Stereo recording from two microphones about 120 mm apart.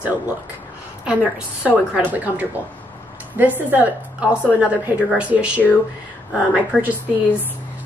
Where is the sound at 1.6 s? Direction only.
10° right (ahead or behind).